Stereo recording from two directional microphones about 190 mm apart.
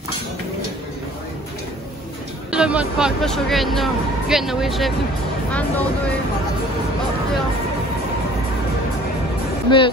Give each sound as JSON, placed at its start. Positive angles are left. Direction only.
{"t": 2.5, "sound": "speech", "side_deg": -5}
{"t": 9.7, "sound": "speech", "side_deg": 25}